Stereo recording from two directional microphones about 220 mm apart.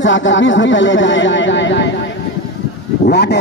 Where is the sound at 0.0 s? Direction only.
60° left (ahead or behind).